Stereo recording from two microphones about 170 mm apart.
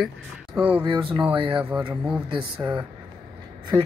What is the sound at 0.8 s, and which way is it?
Speech, 30° right (ahead or behind).